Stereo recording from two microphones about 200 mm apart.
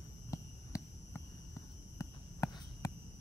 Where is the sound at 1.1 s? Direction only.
15° left (ahead or behind).